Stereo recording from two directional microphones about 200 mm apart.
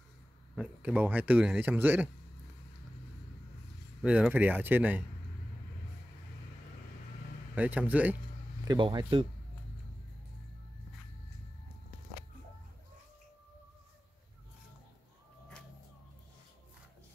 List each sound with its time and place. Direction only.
0.6 s speech: 5° right (ahead or behind)
4.0 s speech: 5° right (ahead or behind)
7.5 s speech: 5° right (ahead or behind)
8.6 s speech: 25° right (ahead or behind)